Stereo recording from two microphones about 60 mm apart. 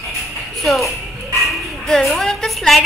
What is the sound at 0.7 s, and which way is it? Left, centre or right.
Children playing, centre.